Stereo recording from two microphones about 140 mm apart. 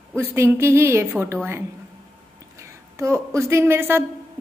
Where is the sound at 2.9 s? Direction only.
20° right (ahead or behind).